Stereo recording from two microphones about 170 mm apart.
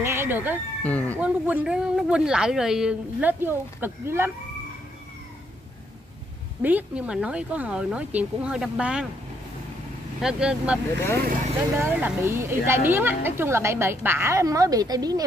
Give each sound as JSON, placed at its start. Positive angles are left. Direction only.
{"t": 0.0, "sound": "cat", "side_deg": -15}
{"t": 0.8, "sound": "speech", "side_deg": 10}
{"t": 1.1, "sound": "speech", "side_deg": -10}
{"t": 6.6, "sound": "speech", "side_deg": -10}
{"t": 10.2, "sound": "speech", "side_deg": -5}